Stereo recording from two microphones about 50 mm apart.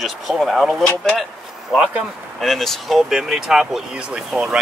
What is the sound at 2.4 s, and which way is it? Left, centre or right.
Speech, centre.